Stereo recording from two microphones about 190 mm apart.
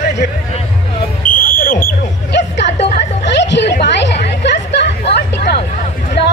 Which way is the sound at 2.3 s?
65° left (ahead or behind).